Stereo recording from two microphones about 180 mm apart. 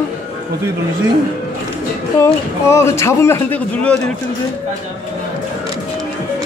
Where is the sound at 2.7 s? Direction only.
15° left (ahead or behind).